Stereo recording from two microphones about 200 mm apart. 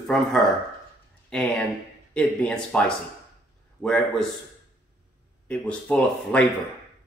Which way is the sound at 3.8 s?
5° left (ahead or behind).